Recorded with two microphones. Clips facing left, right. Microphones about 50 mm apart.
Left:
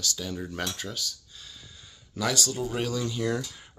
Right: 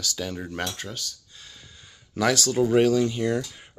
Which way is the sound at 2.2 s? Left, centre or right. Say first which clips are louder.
Right 7 dB; right.